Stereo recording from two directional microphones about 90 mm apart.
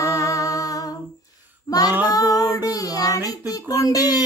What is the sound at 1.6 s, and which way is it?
Child singing, 45° left (ahead or behind).